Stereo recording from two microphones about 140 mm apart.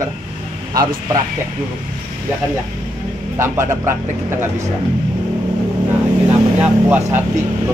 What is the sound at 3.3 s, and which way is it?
A man's voice, 15° right (ahead or behind).